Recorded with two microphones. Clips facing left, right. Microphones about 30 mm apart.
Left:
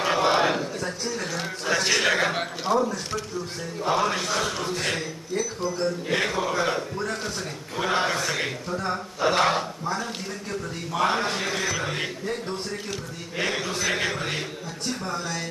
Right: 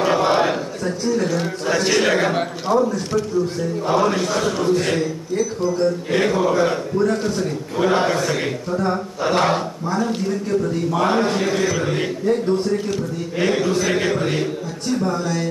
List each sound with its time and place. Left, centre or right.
0.0 s a sound: left
1.1 s a man's voice: left
6.1 s speech: centre
6.6 s a man's voice: left
15.1 s a man's voice: left